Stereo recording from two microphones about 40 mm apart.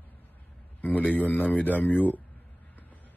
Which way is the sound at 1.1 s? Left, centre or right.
Left.